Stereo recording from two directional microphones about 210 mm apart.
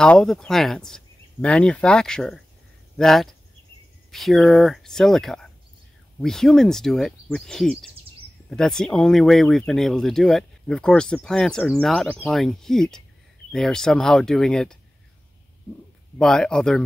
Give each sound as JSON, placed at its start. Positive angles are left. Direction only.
{"t": 0.0, "sound": "speech", "side_deg": 0}
{"t": 16.2, "sound": "speech", "side_deg": 5}